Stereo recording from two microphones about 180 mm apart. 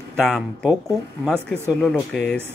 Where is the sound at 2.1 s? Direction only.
5° left (ahead or behind).